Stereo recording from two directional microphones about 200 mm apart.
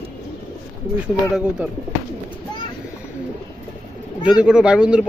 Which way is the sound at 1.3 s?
5° right (ahead or behind).